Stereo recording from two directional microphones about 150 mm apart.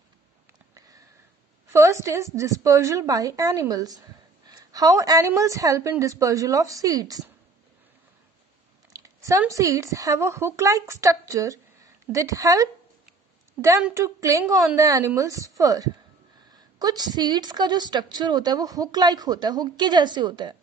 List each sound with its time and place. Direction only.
0.7 s sniff: 25° right (ahead or behind)
1.7 s a woman's voice: 20° right (ahead or behind)
8.9 s a sound: 20° right (ahead or behind)
9.5 s a woman's voice: 20° right (ahead or behind)
13.8 s a woman's voice: 20° right (ahead or behind)